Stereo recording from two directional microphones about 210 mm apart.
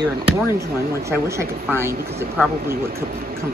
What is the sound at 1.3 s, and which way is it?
Speech, 15° right (ahead or behind).